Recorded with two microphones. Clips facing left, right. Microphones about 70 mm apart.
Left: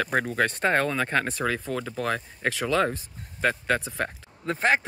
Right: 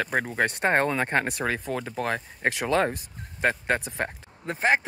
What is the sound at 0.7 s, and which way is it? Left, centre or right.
Speech, right.